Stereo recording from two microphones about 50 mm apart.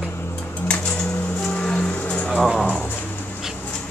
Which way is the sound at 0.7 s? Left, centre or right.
Left.